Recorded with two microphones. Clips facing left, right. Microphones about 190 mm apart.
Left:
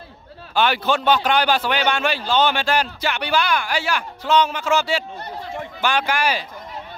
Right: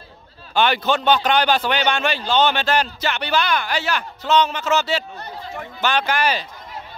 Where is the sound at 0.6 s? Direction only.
5° left (ahead or behind).